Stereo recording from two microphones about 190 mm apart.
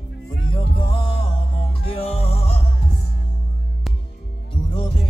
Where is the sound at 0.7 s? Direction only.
30° left (ahead or behind).